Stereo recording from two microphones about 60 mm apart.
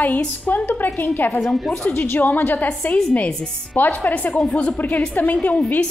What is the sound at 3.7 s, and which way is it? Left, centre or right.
Speech, left.